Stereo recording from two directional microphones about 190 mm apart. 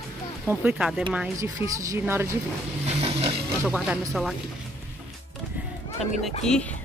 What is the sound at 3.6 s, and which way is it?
Speech, 5° right (ahead or behind).